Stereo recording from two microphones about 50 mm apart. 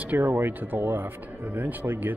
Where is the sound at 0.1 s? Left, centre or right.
Right.